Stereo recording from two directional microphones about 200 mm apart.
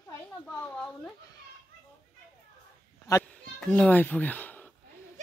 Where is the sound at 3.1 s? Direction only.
5° left (ahead or behind).